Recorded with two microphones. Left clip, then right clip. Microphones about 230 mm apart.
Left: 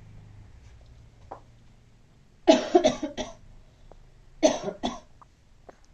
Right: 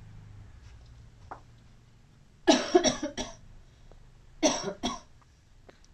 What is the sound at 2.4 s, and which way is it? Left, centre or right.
Cough, right.